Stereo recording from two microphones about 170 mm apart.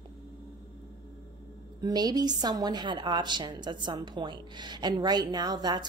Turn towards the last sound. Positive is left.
turn(degrees=-25)  # may be behind; listen again after turning